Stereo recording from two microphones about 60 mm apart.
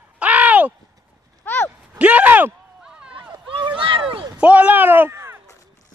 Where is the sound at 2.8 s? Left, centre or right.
Centre.